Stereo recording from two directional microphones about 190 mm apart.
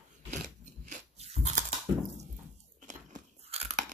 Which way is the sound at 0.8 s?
35° right (ahead or behind).